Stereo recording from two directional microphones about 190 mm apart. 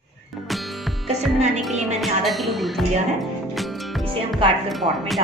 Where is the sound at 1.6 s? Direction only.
Centre (ahead or behind).